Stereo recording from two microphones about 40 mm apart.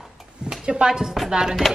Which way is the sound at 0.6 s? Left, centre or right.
Right.